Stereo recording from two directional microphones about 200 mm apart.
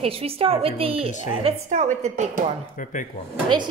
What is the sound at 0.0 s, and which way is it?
A woman's voice, 30° right (ahead or behind).